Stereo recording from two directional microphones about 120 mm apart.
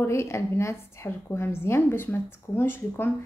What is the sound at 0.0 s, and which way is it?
A woman's voice, 25° left (ahead or behind).